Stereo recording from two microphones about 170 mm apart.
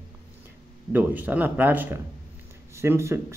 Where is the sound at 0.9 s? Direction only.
10° right (ahead or behind).